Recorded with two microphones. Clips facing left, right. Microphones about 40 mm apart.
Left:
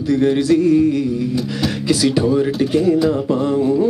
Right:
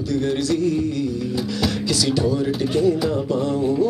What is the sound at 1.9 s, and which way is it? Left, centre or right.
Mantra, left.